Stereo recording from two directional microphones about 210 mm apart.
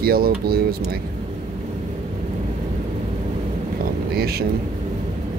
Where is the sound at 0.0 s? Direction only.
45° right (ahead or behind).